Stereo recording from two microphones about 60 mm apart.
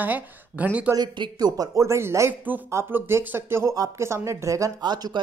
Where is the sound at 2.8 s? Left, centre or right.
Right.